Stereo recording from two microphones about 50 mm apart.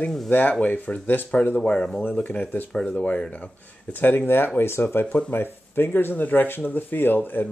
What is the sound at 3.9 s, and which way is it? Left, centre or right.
Speech, left.